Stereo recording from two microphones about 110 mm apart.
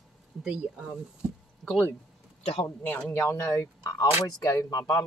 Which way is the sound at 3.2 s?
25° left (ahead or behind).